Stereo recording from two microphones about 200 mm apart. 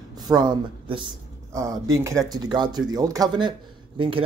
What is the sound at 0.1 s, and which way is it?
Speech, 20° right (ahead or behind).